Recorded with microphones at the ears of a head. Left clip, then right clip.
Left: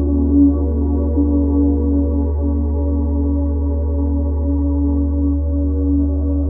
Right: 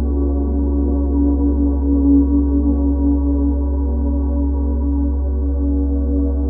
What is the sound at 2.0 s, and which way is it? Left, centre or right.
Singing bowl, right.